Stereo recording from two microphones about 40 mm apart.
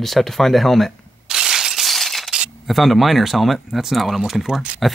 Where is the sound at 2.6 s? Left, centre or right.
Centre.